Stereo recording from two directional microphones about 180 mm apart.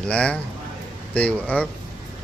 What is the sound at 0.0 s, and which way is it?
A man's voice, 5° left (ahead or behind).